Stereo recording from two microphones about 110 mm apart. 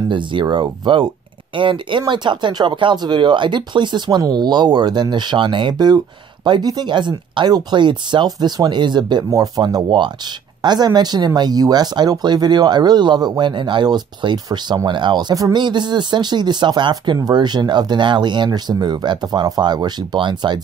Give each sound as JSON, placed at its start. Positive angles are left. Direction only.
{"t": 0.1, "sound": "speech", "side_deg": -50}